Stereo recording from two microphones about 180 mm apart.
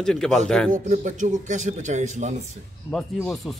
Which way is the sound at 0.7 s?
45° right (ahead or behind).